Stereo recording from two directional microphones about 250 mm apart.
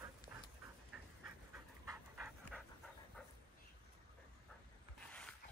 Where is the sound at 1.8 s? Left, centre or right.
Centre.